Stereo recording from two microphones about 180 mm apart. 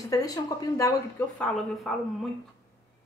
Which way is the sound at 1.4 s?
Centre (ahead or behind).